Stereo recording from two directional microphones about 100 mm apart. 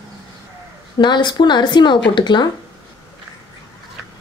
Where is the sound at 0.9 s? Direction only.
50° left (ahead or behind).